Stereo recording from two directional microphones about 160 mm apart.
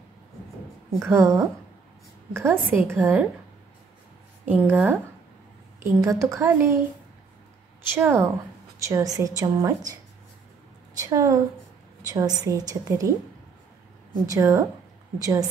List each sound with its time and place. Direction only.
1.0 s a woman's voice: 20° right (ahead or behind)
4.5 s a woman's voice: 10° right (ahead or behind)
7.9 s a woman's voice: 15° right (ahead or behind)
11.0 s a woman's voice: 20° right (ahead or behind)
14.2 s a woman's voice: 20° right (ahead or behind)